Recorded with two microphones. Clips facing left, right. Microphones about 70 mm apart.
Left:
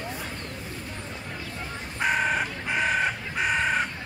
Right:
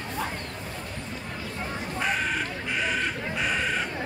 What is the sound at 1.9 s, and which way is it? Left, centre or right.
Crow, centre.